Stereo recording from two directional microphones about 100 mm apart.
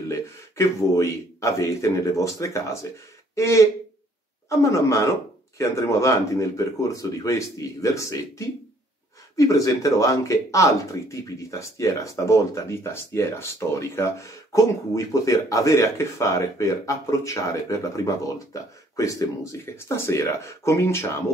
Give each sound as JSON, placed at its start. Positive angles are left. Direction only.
{"t": 0.1, "sound": "speech", "side_deg": 30}